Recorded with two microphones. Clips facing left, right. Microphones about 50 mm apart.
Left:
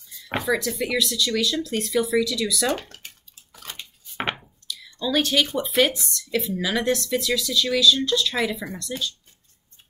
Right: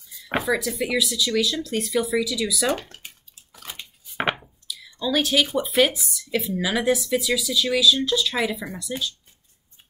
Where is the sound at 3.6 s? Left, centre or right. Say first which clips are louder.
Even; centre.